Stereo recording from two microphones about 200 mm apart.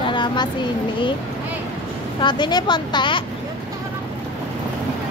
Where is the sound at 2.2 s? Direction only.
20° left (ahead or behind).